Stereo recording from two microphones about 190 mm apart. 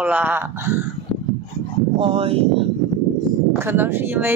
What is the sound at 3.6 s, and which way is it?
Speech, 10° right (ahead or behind).